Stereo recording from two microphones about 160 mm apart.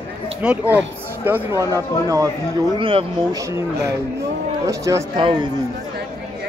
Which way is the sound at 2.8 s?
35° right (ahead or behind).